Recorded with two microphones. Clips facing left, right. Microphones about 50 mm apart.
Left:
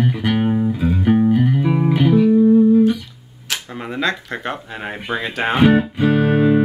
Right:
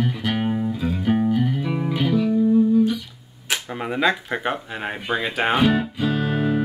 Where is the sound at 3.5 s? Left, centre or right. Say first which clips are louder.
Right 1 dB; centre.